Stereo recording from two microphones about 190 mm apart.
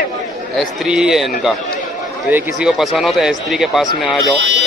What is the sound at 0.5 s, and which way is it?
Speech, centre (ahead or behind).